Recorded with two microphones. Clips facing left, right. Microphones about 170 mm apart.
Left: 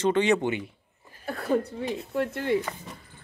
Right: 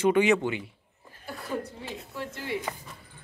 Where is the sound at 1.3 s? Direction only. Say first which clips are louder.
Left 8 dB; 60° left (ahead or behind).